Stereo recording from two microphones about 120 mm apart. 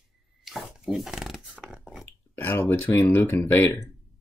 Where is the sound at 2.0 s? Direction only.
15° left (ahead or behind).